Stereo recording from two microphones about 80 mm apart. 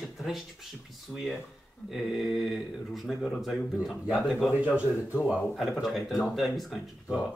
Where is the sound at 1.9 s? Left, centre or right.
Centre.